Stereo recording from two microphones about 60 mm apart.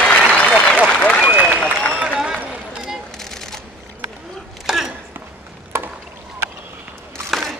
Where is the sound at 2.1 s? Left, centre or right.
Centre.